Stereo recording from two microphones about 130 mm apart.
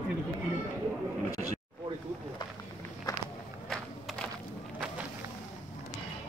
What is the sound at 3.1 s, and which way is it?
Walk, 30° left (ahead or behind).